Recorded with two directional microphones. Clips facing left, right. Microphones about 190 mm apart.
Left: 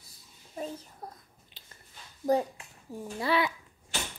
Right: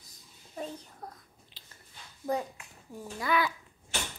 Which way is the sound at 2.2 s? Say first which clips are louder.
Left 6 dB; 30° left (ahead or behind).